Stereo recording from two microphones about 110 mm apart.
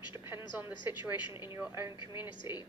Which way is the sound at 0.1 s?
25° right (ahead or behind).